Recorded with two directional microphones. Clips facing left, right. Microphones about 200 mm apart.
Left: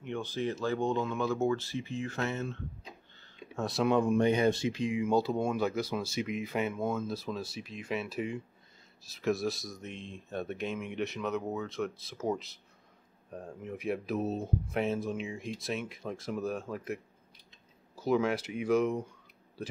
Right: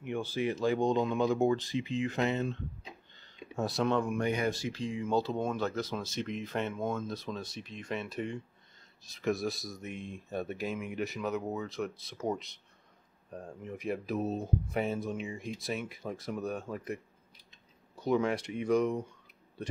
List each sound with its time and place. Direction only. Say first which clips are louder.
0.0 s speech: right 1 dB; 10° right (ahead or behind)
3.5 s speech: left 1 dB; centre (ahead or behind)
3.9 s speech: left 4 dB; 25° left (ahead or behind); by 18.9 s 5° left (ahead or behind)